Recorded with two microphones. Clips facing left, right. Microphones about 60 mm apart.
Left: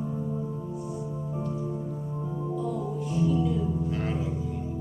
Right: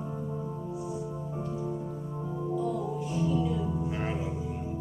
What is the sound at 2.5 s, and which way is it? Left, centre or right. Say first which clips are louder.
Music: right 1 dB; centre.